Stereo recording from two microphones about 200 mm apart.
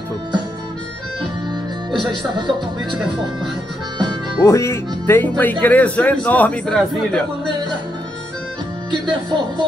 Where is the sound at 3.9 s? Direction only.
20° right (ahead or behind).